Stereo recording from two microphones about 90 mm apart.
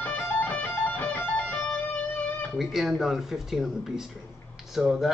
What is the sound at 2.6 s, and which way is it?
Speech, 5° right (ahead or behind).